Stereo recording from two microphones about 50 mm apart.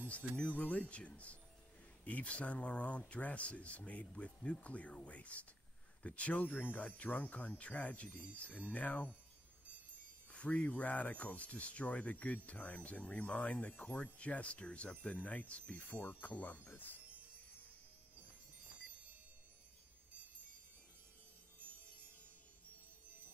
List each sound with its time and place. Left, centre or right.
0.4 s speech: left
10.3 s speech: left